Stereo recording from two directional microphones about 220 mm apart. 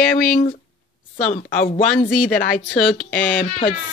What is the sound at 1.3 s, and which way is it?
Speech, 40° left (ahead or behind).